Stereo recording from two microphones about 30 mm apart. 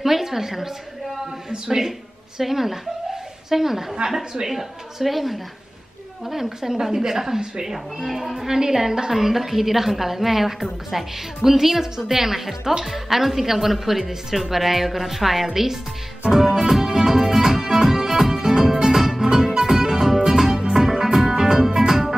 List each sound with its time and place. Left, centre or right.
0.0 s a woman's voice: centre
1.9 s a woman's voice: centre
6.4 s a woman's voice: centre
8.1 s a woman's voice: centre
8.5 s a woman's voice: centre
16.3 s music: centre
19.2 s music: right